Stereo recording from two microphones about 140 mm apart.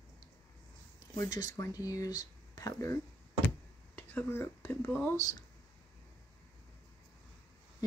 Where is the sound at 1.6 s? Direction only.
25° left (ahead or behind).